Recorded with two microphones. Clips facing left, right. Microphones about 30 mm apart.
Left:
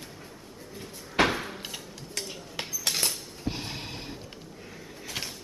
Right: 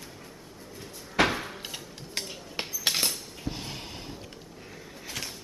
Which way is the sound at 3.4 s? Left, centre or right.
Left.